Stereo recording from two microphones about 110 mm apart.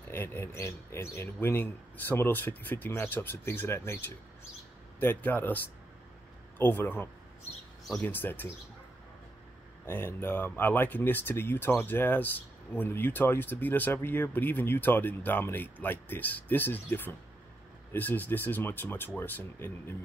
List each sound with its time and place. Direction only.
0.1 s speech: 20° left (ahead or behind)
6.6 s speech: 20° left (ahead or behind)
9.8 s speech: 20° left (ahead or behind)